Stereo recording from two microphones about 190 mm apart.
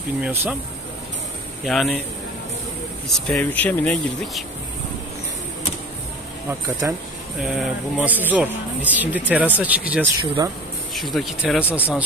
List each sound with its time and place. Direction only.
0.2 s speech: 10° right (ahead or behind)
1.6 s speech: centre (ahead or behind)
3.1 s speech: 5° left (ahead or behind)
6.8 s speech: 15° right (ahead or behind)
7.3 s speech: 5° right (ahead or behind)
10.4 s speech: 20° right (ahead or behind)
11.0 s speech: centre (ahead or behind)